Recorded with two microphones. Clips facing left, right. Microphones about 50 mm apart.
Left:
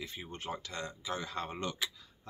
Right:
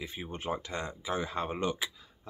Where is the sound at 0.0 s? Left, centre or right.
Centre.